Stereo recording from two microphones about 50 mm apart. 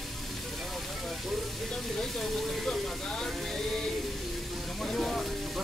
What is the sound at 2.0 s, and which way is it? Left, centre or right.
Speech, centre.